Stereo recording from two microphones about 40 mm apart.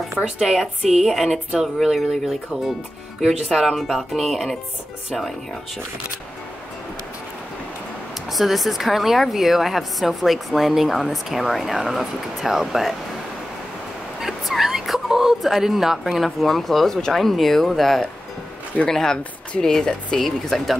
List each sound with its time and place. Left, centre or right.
0.1 s a woman's voice: right
0.5 s a woman's voice: centre
8.3 s a woman's voice: centre
14.2 s a sound: centre
16.3 s a woman's voice: centre
20.2 s a woman's voice: centre